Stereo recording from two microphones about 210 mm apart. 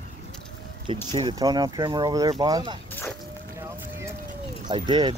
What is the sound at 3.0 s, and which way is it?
Whip, 10° left (ahead or behind).